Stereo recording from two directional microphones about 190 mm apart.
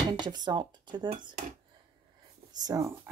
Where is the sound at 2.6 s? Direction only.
15° right (ahead or behind).